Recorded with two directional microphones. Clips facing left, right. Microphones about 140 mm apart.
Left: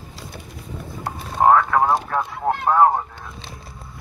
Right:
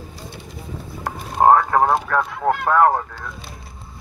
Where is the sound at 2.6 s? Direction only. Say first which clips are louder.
Even; 55° right (ahead or behind).